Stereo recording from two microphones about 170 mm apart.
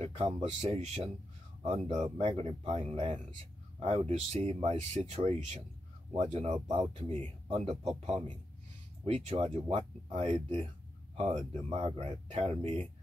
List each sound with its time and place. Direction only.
0.0 s speech: 40° right (ahead or behind)